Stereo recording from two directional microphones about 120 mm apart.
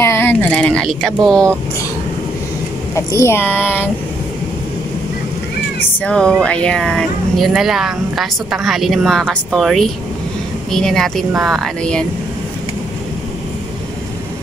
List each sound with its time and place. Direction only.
0.0 s speech: 20° left (ahead or behind); by 1.5 s 5° left (ahead or behind)
3.1 s child singing: 20° left (ahead or behind)
5.9 s child singing: 5° left (ahead or behind)
6.4 s speech: 10° left (ahead or behind)